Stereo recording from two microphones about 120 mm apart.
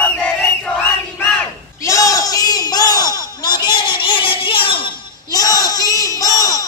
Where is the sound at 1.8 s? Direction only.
25° left (ahead or behind).